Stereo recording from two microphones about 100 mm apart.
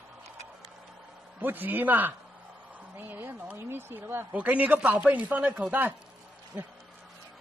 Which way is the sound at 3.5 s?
25° right (ahead or behind).